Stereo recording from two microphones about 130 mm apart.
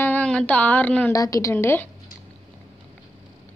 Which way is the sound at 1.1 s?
25° left (ahead or behind).